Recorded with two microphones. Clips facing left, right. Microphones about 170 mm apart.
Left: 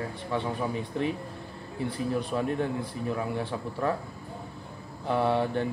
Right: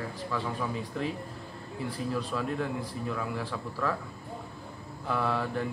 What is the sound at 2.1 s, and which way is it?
A man's voice, 25° left (ahead or behind).